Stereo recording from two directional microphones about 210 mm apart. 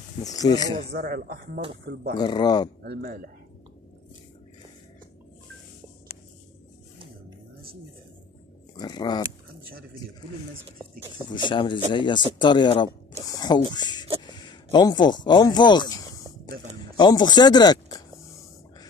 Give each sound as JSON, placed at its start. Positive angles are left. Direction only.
{"t": 0.2, "sound": "speech", "side_deg": 15}
{"t": 0.9, "sound": "speech", "side_deg": -45}
{"t": 2.1, "sound": "speech", "side_deg": 20}
{"t": 2.8, "sound": "speech", "side_deg": -50}
{"t": 8.7, "sound": "speech", "side_deg": 20}
{"t": 11.2, "sound": "speech", "side_deg": 20}
{"t": 14.2, "sound": "a sound", "side_deg": 20}
{"t": 16.9, "sound": "speech", "side_deg": 20}